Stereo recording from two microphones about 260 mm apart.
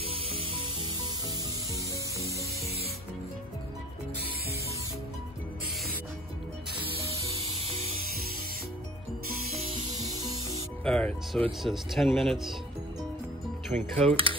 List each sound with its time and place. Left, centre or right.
7.2 s music: right
10.8 s speech: centre
13.7 s speech: right